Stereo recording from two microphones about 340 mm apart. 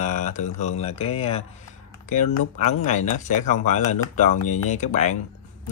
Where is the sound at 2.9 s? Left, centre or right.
Left.